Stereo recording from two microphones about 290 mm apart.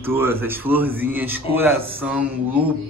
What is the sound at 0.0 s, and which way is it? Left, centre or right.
A man's voice, centre.